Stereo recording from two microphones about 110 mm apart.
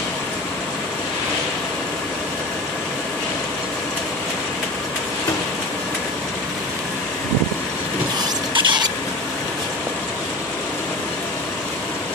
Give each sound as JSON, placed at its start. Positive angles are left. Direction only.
{"t": 8.5, "sound": "rodents", "side_deg": -45}